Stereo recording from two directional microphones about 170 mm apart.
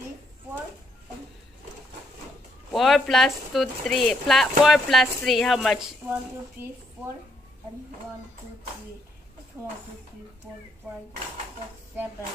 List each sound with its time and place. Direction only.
2.7 s a woman's voice: centre (ahead or behind)
9.6 s speech: 15° left (ahead or behind)